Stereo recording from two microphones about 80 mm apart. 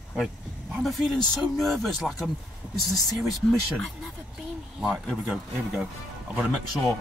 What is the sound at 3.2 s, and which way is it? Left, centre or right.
Speech, centre.